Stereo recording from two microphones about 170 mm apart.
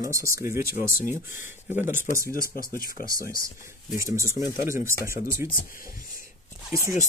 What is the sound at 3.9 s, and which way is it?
Speech, 15° right (ahead or behind).